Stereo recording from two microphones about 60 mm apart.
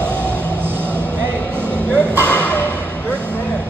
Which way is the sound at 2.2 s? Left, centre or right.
Left.